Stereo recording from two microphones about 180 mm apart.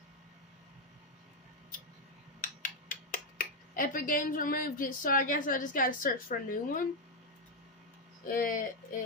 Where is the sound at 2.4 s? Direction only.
50° left (ahead or behind).